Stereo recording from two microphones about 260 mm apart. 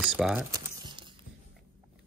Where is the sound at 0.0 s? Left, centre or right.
Centre.